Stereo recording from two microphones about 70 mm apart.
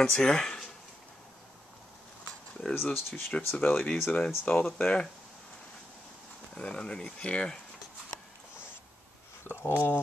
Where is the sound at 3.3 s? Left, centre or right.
Centre.